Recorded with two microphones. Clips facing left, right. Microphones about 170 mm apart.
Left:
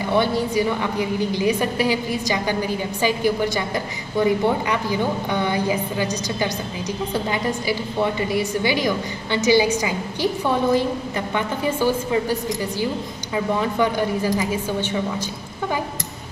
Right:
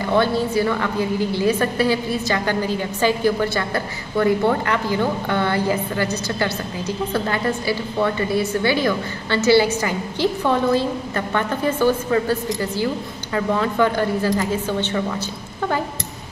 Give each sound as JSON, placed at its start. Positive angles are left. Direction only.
{"t": 0.1, "sound": "a woman's voice", "side_deg": 15}